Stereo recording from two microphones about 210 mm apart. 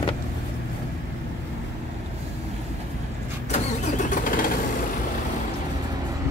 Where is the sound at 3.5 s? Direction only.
35° left (ahead or behind).